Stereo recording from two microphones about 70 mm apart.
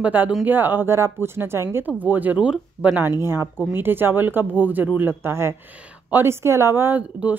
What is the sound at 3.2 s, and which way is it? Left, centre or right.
A woman's voice, right.